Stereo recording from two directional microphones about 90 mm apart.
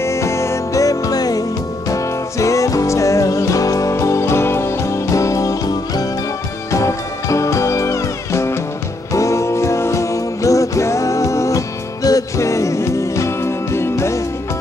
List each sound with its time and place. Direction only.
0.0 s music: 35° left (ahead or behind)